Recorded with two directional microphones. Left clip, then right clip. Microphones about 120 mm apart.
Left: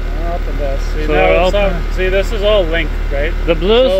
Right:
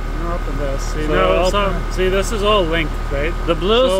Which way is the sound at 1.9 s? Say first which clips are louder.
Even; 90° right.